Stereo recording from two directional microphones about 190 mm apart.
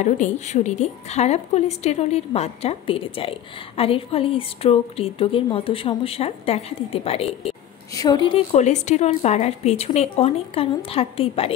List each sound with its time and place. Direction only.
0.0 s a woman's voice: 40° left (ahead or behind)
7.9 s a woman's voice: 20° left (ahead or behind)